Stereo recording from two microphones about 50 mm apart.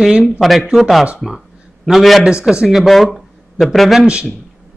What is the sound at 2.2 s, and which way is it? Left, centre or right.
Speech, centre.